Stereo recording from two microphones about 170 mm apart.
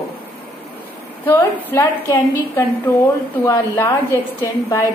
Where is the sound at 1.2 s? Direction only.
15° left (ahead or behind).